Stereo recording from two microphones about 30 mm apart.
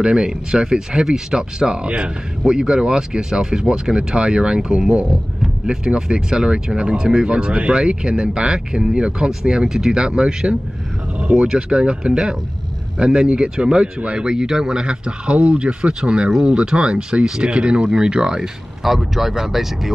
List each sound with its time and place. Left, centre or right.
0.0 s speech: right
0.7 s speech: centre; by 2.0 s right
2.4 s speech: right
6.1 s speech: right
9.3 s speech: centre; by 15.4 s right
15.9 s speech: right
18.9 s speech: centre